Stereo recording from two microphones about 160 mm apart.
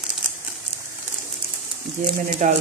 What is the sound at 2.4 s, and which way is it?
Speech, 50° right (ahead or behind).